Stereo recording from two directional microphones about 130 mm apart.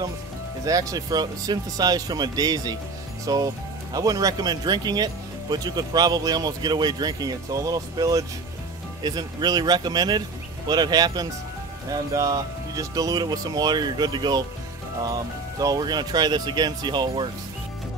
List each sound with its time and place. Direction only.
0.7 s speech: 25° right (ahead or behind)
15.6 s speech: 30° right (ahead or behind)